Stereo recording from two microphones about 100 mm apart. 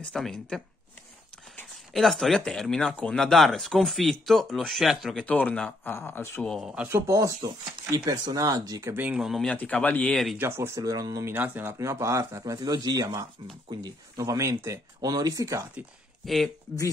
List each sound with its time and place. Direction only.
0.1 s speech: 5° left (ahead or behind)
2.0 s speech: centre (ahead or behind)
5.2 s speech: 15° left (ahead or behind)
6.6 s a man's voice: 10° right (ahead or behind)
6.9 s speech: 30° right (ahead or behind)
7.4 s speech: 40° right (ahead or behind)
8.9 s a man's voice: 15° right (ahead or behind)
9.2 s speech: centre (ahead or behind)
10.3 s speech: 25° right (ahead or behind)
10.8 s speech: 40° right (ahead or behind)
11.3 s speech: 20° right (ahead or behind); by 15.6 s 35° right (ahead or behind)
16.2 s speech: centre (ahead or behind)